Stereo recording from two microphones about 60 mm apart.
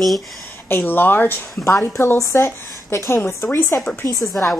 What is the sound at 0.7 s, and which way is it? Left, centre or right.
Speech, left.